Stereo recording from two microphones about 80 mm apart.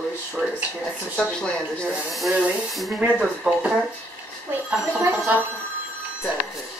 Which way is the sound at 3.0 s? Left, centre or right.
Centre.